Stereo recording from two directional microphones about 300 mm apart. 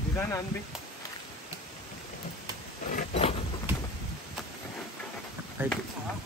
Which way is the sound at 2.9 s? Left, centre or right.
Centre.